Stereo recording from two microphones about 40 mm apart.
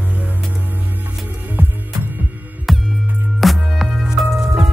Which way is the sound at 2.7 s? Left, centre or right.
Centre.